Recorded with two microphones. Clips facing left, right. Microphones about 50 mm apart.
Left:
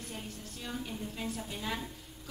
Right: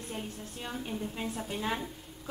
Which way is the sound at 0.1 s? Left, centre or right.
Right.